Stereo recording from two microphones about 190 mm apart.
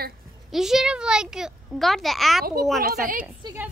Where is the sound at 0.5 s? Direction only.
Centre (ahead or behind).